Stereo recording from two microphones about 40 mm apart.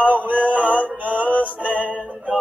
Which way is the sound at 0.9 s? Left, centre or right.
Right.